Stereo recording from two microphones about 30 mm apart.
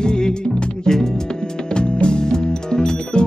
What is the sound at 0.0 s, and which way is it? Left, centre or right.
Music, left.